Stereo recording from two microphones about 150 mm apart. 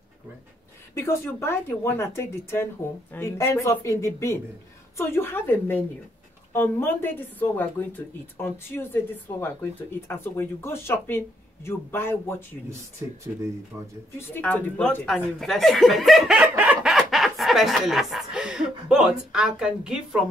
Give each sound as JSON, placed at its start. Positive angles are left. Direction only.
{"t": 0.9, "sound": "speech", "side_deg": 15}
{"t": 14.3, "sound": "speech", "side_deg": 10}